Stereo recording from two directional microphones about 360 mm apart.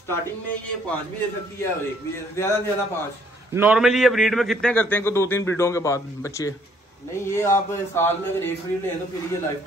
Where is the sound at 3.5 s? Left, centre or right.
Centre.